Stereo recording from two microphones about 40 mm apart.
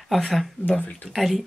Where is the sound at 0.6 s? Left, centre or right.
Left.